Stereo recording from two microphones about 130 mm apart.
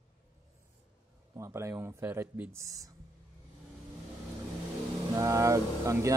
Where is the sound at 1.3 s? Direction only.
25° right (ahead or behind).